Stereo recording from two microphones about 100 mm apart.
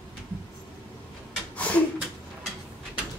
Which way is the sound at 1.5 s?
15° left (ahead or behind).